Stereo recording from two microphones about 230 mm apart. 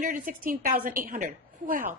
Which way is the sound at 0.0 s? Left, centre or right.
Right.